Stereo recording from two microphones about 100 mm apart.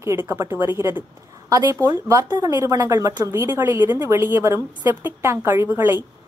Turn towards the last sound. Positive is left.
turn(degrees=-25)  # may be behind; listen again after turning